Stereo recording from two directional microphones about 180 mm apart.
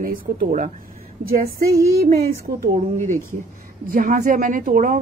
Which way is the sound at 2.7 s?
40° right (ahead or behind).